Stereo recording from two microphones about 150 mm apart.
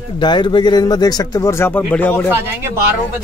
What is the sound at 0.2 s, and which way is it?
Speech, 30° left (ahead or behind).